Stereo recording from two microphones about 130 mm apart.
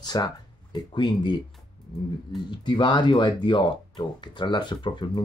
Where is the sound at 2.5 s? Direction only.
35° left (ahead or behind).